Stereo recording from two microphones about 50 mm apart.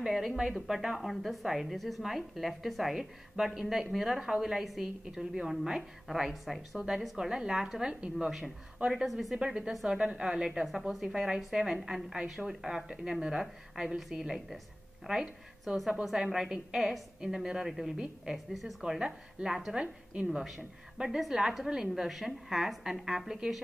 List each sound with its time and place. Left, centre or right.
0.0 s a woman's voice: centre
7.9 s a woman's voice: centre
9.0 s a woman's voice: centre
9.3 s a woman's voice: centre
17.9 s a woman's voice: centre
18.3 s a woman's voice: centre
20.2 s a woman's voice: centre